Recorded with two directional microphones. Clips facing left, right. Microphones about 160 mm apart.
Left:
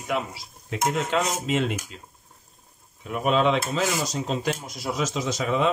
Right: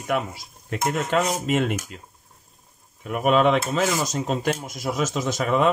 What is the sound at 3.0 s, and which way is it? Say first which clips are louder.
Speech: right 3 dB; 55° right (ahead or behind).